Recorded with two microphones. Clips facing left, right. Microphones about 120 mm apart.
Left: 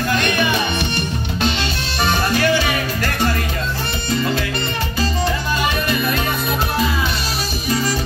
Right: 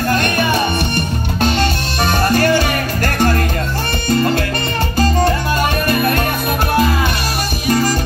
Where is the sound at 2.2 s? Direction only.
50° right (ahead or behind).